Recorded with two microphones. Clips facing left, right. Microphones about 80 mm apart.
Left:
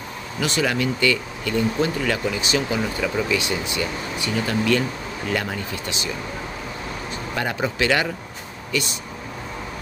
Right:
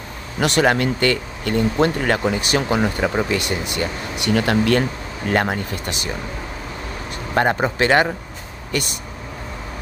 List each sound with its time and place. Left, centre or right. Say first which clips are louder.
0.4 s speech: right 5 dB; right
7.3 s speech: right 6 dB; right
8.7 s speech: right 1 dB; right